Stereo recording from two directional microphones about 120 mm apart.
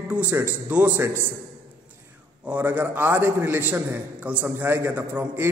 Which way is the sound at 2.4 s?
15° right (ahead or behind).